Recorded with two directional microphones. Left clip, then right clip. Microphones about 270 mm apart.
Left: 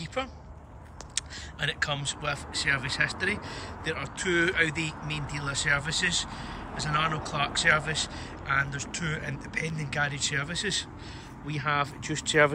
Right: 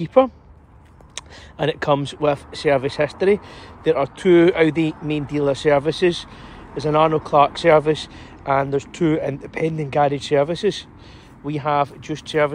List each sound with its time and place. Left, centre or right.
0.0 s speech: centre